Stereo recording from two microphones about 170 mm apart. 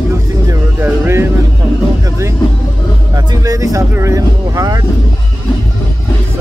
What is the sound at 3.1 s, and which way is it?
Speech, 20° right (ahead or behind).